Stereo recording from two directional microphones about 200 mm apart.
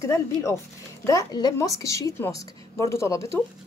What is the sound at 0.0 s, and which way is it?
A woman's voice, 15° left (ahead or behind).